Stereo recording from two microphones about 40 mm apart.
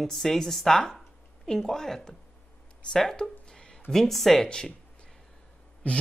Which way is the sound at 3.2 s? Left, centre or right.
Left.